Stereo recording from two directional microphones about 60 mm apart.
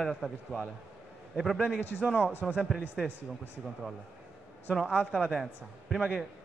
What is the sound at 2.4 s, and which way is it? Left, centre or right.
Speech, centre.